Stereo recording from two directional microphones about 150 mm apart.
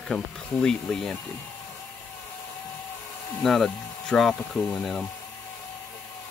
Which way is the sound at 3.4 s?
5° left (ahead or behind).